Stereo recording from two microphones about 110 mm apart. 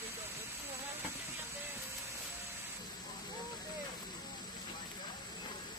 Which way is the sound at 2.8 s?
40° left (ahead or behind).